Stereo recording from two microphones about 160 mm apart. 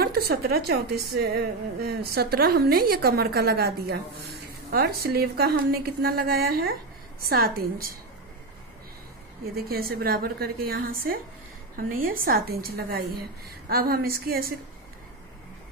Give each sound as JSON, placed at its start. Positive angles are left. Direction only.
{"t": 0.0, "sound": "a woman's voice", "side_deg": -75}
{"t": 9.6, "sound": "a woman's voice", "side_deg": -70}